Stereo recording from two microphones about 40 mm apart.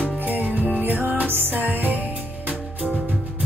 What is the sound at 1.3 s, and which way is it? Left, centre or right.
Music, right.